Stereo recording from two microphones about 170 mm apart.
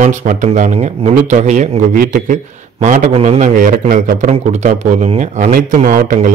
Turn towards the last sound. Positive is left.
turn(degrees=-50)  # may be behind; listen again after turning